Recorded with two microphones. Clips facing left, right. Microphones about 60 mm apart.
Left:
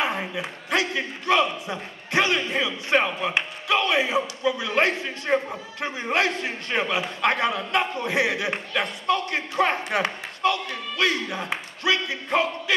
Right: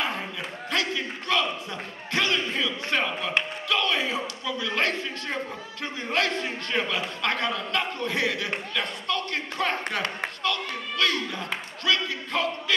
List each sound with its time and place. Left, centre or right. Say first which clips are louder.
0.0 s a man's voice: left 4 dB; centre